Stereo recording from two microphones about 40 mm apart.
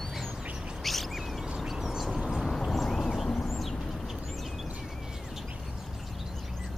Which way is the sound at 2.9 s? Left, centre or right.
Centre.